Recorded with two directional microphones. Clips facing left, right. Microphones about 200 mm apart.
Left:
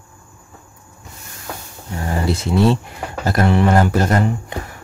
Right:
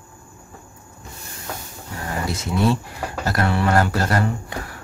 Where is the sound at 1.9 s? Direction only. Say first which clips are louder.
Left 6 dB; 30° left (ahead or behind).